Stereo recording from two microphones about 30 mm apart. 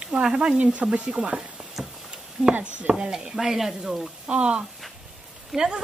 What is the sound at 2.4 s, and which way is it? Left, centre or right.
Speech, centre.